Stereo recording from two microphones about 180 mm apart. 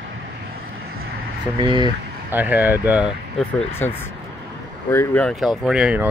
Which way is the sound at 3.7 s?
10° left (ahead or behind).